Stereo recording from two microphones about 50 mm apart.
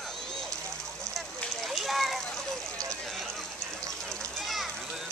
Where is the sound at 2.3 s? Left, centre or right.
Centre.